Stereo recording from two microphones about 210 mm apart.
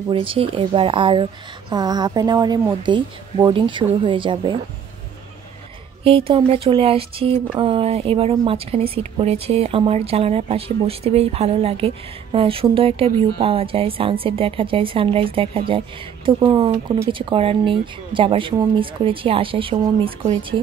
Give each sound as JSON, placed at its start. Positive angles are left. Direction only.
{"t": 0.1, "sound": "speech", "side_deg": -25}
{"t": 6.0, "sound": "speech", "side_deg": -25}